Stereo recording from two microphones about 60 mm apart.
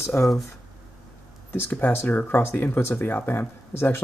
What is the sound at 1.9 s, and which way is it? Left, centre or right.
Speech, left.